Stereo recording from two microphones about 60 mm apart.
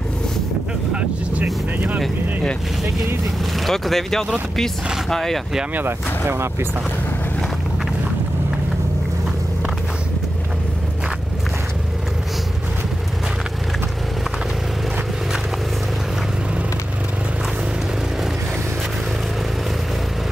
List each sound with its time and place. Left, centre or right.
0.9 s vehicle: right
3.5 s speech: centre
5.8 s speech: right